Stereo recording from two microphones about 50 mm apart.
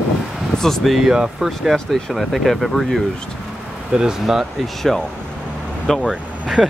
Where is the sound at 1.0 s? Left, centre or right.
Centre.